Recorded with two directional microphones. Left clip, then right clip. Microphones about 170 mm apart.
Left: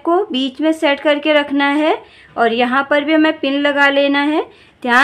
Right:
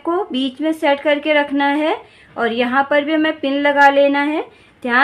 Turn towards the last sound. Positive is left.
turn(degrees=30)  # may be behind; listen again after turning